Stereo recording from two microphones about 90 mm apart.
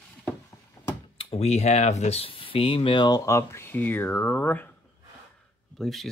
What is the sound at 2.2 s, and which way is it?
Speech, 85° left.